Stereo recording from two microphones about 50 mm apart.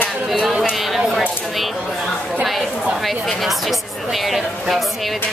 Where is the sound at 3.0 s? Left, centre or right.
Centre.